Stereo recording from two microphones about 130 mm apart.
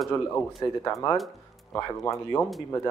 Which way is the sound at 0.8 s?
25° left (ahead or behind).